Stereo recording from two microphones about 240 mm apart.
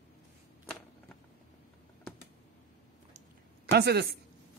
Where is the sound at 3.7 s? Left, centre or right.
Right.